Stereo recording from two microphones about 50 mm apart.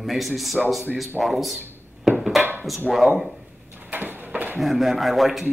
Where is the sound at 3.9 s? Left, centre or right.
Right.